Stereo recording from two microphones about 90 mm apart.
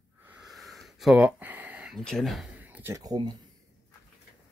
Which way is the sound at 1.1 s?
20° right (ahead or behind).